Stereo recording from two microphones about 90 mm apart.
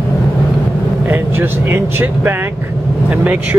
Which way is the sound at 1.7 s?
25° right (ahead or behind).